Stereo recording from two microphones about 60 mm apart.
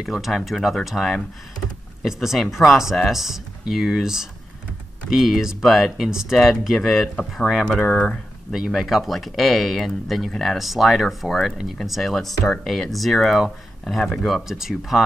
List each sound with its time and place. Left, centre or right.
0.0 s speech: centre
7.8 s speech: left
8.7 s speech: centre